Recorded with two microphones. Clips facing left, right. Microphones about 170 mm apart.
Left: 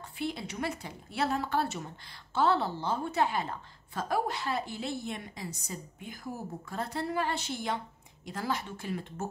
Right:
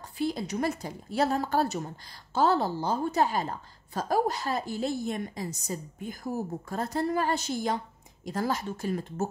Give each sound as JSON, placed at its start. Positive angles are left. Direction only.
{"t": 0.2, "sound": "a woman's voice", "side_deg": -40}